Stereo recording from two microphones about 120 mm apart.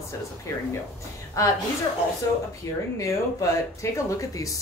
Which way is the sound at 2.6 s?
25° left (ahead or behind).